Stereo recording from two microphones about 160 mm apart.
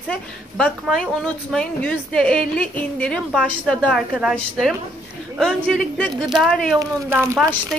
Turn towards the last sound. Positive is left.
turn(degrees=0)  # may be behind; listen again after turning